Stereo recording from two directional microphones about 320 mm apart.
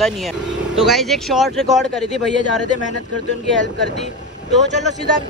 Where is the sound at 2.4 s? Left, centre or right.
Left.